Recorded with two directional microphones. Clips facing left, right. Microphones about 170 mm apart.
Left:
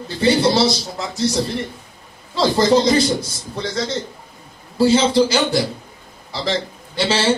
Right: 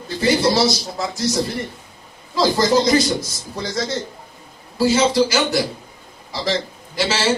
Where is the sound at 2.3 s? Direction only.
30° left (ahead or behind).